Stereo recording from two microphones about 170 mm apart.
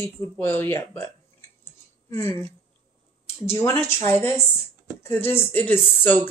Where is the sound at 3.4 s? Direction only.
15° left (ahead or behind).